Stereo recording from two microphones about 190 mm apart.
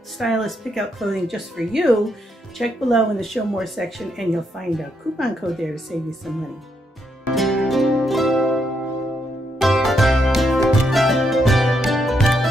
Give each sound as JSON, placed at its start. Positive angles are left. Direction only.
{"t": 0.2, "sound": "speech", "side_deg": 0}
{"t": 7.3, "sound": "music", "side_deg": 0}